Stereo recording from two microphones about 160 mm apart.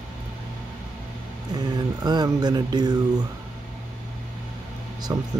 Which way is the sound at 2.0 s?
25° right (ahead or behind).